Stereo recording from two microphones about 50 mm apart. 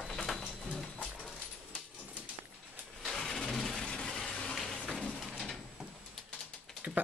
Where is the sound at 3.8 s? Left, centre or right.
Centre.